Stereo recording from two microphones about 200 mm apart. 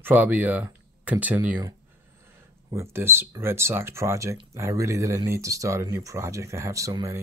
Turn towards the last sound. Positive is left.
turn(degrees=-15)  # may be behind; listen again after turning